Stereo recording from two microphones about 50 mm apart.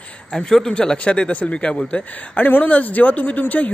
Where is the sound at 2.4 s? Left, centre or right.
Left.